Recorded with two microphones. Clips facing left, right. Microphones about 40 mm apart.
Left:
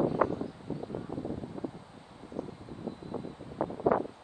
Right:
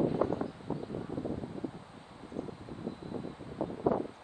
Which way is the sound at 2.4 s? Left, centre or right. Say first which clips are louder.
Left 1 dB; left.